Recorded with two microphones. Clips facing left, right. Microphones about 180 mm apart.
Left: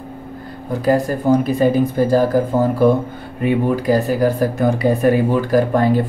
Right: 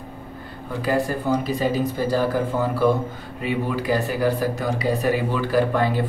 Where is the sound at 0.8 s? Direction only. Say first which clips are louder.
Left 6 dB; 45° left (ahead or behind).